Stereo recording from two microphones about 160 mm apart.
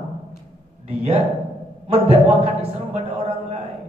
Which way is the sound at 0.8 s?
40° right (ahead or behind).